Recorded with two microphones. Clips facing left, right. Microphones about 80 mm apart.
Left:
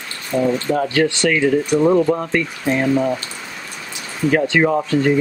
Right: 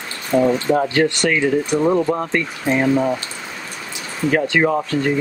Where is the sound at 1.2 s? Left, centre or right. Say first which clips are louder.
Left 1 dB; centre.